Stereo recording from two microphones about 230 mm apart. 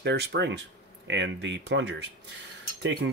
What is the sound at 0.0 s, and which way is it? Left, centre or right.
Speech, right.